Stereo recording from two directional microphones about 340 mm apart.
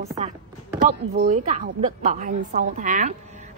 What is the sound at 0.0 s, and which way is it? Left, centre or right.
A woman's voice, centre.